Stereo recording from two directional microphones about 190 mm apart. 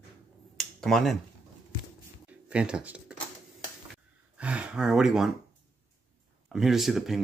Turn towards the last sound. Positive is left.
turn(degrees=0)  # may be behind; listen again after turning